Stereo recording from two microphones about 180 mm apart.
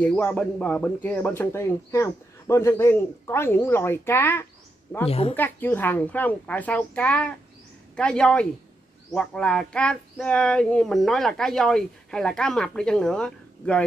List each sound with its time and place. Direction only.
0.0 s speech: 10° left (ahead or behind)
5.0 s a woman's voice: 35° left (ahead or behind)
5.3 s speech: 10° left (ahead or behind)